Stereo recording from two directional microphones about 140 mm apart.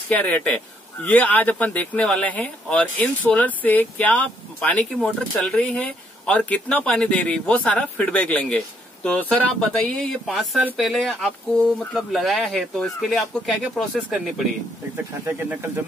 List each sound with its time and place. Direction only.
0.1 s speech: 10° left (ahead or behind)
15.2 s speech: 15° right (ahead or behind)